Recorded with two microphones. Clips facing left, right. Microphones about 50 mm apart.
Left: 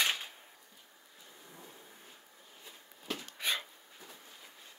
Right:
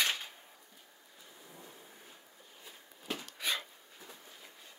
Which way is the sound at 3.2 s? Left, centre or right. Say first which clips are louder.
Left 1 dB; left.